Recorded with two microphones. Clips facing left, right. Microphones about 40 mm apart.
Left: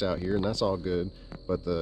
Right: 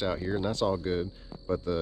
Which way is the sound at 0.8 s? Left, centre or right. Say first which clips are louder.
Left 1 dB; right.